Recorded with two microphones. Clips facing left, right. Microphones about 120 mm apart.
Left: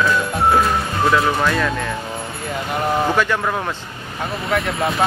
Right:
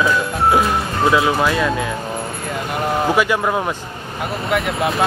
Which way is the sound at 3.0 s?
10° right (ahead or behind).